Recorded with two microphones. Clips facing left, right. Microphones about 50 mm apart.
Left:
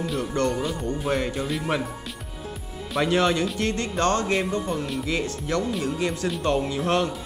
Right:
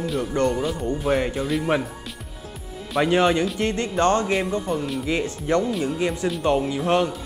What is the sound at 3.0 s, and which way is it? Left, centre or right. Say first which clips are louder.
Speech: right 3 dB; centre.